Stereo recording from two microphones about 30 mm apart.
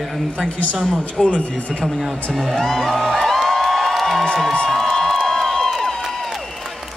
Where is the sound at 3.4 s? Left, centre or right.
Centre.